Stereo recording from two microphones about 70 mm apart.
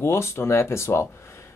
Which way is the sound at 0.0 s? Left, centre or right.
Left.